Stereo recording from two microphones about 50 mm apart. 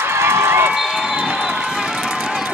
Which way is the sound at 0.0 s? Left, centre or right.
Right.